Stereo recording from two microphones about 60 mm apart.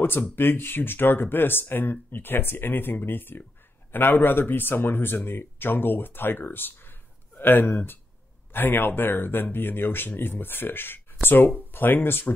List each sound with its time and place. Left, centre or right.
0.4 s speech: left